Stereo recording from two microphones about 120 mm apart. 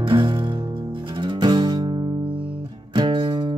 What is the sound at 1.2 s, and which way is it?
Guitar, 40° right (ahead or behind).